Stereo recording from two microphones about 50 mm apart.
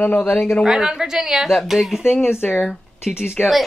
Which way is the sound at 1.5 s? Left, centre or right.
Centre.